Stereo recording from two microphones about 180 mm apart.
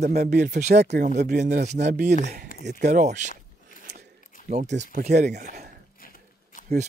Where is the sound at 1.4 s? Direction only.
40° right (ahead or behind).